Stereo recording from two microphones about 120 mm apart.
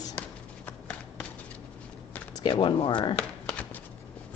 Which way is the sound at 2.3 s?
40° left (ahead or behind).